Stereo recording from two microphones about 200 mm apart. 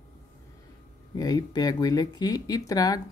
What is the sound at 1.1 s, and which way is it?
Speech, 20° left (ahead or behind).